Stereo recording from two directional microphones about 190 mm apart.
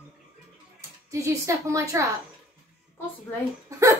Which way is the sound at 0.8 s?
15° right (ahead or behind).